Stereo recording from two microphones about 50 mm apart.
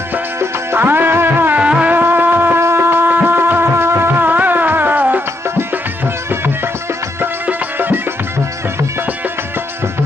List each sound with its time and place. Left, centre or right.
0.7 s music: right
1.6 s music: right
1.9 s music: right
2.6 s a sound: right
3.1 s music: right
4.2 s music: right
7.4 s music: right